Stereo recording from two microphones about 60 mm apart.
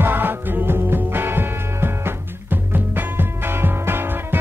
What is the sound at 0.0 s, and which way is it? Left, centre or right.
Music, right.